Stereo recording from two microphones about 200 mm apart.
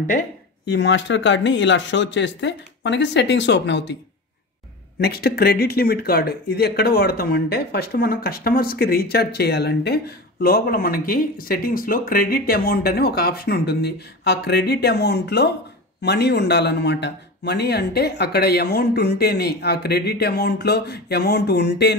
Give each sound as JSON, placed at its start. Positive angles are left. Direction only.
{"t": 0.7, "sound": "a man's voice", "side_deg": 60}
{"t": 5.0, "sound": "a man's voice", "side_deg": 50}